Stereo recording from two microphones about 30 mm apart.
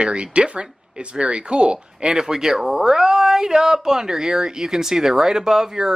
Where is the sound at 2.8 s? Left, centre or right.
Centre.